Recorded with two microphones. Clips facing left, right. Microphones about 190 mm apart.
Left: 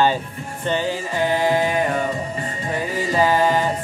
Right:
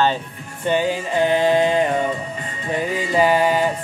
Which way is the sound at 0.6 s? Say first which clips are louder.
Right 3 dB; 15° right (ahead or behind).